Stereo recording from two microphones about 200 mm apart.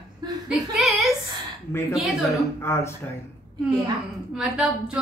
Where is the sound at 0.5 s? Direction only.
Centre (ahead or behind).